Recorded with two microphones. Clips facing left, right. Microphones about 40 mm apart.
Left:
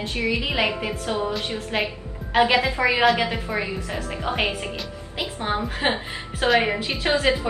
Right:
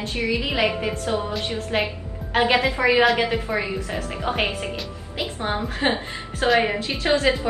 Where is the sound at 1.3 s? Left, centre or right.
Centre.